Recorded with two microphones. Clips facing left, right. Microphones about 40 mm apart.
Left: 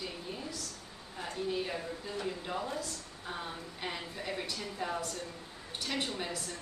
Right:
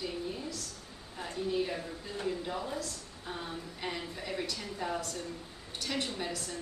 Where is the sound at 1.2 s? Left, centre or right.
Centre.